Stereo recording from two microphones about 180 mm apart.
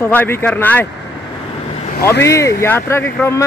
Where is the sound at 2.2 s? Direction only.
15° left (ahead or behind).